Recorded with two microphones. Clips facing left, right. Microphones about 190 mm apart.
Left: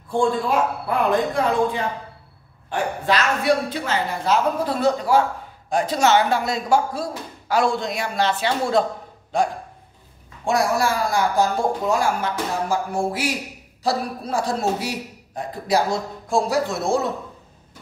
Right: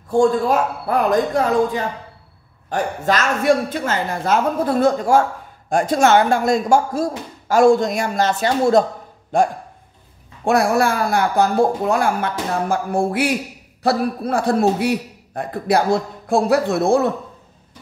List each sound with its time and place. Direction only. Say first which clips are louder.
0.1 s a man's voice: right 5 dB; 45° right (ahead or behind); by 17.1 s 60° right (ahead or behind)